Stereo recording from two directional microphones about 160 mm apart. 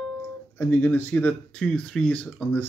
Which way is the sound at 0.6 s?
10° left (ahead or behind).